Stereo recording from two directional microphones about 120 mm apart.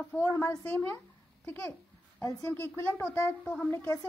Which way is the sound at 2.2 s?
20° left (ahead or behind).